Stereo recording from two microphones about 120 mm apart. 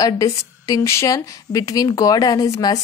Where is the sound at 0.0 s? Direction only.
30° left (ahead or behind).